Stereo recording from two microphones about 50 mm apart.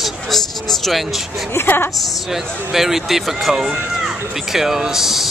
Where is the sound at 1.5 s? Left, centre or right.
Left.